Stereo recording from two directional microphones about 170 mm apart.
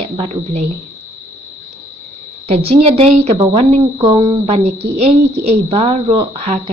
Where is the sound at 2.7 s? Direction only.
35° right (ahead or behind).